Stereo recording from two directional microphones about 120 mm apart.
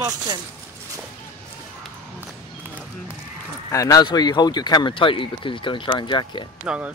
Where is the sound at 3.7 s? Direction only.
30° left (ahead or behind).